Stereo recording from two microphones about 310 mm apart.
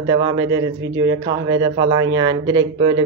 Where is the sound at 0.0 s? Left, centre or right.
Centre.